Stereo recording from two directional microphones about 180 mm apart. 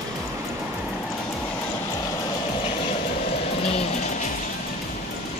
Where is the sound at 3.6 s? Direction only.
35° left (ahead or behind).